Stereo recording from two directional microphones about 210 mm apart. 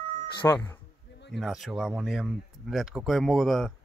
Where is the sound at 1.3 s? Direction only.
Centre (ahead or behind).